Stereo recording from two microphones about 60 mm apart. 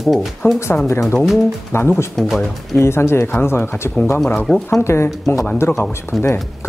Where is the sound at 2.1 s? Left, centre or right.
Centre.